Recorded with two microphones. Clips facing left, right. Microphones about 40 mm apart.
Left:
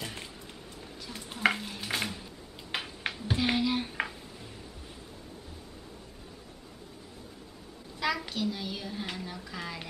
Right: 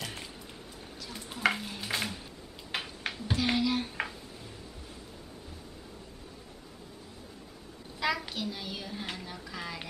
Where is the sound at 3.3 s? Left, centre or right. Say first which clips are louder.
Even; centre.